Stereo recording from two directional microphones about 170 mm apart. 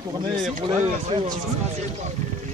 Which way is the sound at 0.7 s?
40° right (ahead or behind).